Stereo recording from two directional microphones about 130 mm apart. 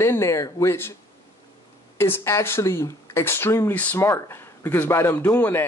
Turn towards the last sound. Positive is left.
turn(degrees=15)  # may be behind; listen again after turning